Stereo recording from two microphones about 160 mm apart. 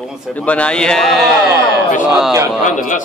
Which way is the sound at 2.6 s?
55° left (ahead or behind).